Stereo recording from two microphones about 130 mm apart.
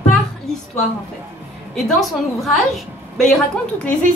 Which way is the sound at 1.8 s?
Centre (ahead or behind).